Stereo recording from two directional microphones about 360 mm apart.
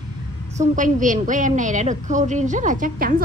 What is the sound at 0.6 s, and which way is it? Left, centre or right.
A woman's voice, right.